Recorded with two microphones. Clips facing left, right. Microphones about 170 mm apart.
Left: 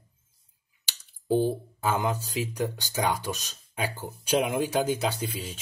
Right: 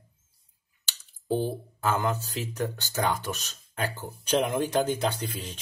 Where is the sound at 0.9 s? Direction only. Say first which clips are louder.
Left 3 dB; 15° left (ahead or behind).